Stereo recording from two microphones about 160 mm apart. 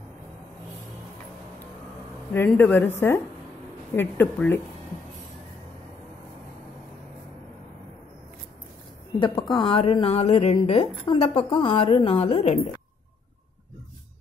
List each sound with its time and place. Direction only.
2.3 s a woman's voice: 10° left (ahead or behind)
9.5 s a woman's voice: 35° left (ahead or behind)